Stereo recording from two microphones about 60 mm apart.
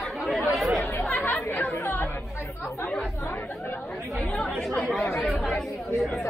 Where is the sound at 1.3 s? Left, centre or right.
Left.